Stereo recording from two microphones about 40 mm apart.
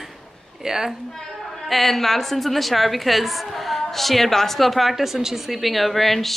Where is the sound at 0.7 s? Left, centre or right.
Centre.